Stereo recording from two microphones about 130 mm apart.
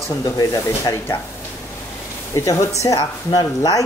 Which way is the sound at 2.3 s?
25° left (ahead or behind).